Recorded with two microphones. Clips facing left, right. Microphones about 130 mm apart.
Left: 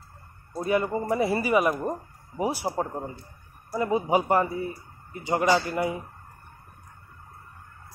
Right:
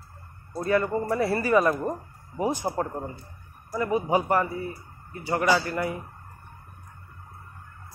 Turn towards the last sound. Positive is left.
turn(degrees=15)  # may be behind; listen again after turning